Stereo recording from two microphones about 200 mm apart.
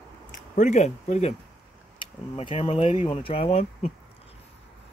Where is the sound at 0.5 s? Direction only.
35° left (ahead or behind).